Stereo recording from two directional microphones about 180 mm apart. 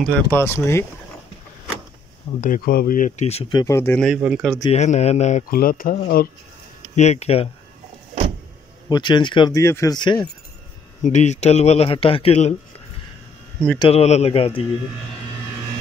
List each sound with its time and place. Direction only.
0.0 s speech: 10° left (ahead or behind)
2.4 s speech: 50° left (ahead or behind); by 4.0 s 15° left (ahead or behind)
4.0 s speech: 5° right (ahead or behind)
4.6 s speech: 40° left (ahead or behind)
5.5 s speech: 55° left (ahead or behind)
7.0 s speech: 35° left (ahead or behind)
8.8 s speech: 25° left (ahead or behind)
11.1 s speech: 40° left (ahead or behind)
13.7 s speech: 35° left (ahead or behind)